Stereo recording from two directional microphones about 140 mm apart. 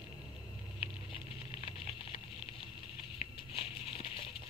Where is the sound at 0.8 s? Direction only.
40° left (ahead or behind).